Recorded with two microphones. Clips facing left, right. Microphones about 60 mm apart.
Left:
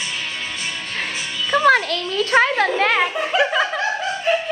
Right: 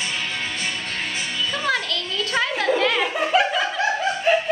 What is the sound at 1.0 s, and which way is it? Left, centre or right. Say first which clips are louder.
A child's voice: left 2 dB; left.